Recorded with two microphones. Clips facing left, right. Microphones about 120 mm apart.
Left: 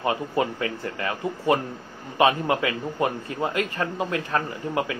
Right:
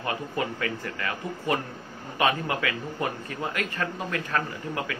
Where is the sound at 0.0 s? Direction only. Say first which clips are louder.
Left 5 dB; 25° left (ahead or behind).